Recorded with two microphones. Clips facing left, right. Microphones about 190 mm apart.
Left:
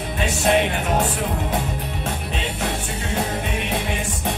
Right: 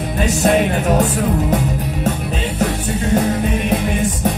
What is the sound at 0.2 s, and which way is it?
Music, 40° right (ahead or behind).